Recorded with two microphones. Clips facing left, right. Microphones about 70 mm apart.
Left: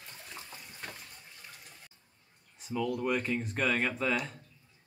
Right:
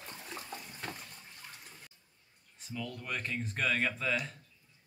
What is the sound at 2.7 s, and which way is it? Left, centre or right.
Speech, centre.